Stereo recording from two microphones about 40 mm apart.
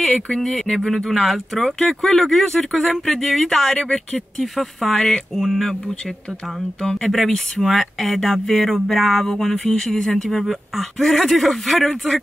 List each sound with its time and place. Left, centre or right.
0.4 s speech: centre
3.7 s speech: left
4.4 s speech: centre
5.4 s speech: centre